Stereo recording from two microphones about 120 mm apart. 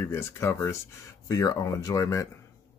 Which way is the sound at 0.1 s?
20° left (ahead or behind).